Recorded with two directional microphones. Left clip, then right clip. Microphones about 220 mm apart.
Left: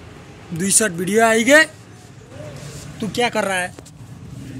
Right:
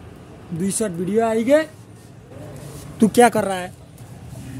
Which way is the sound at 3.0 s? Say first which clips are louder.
Right 9 dB; 55° right (ahead or behind).